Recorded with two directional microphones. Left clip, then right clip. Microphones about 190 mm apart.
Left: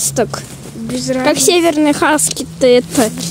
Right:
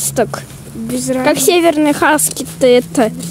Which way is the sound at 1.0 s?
55° right (ahead or behind).